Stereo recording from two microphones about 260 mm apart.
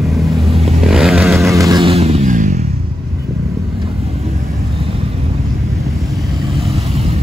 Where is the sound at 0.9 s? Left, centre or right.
Centre.